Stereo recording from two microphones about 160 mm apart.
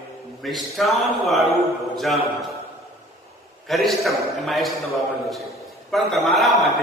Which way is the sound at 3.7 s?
Centre (ahead or behind).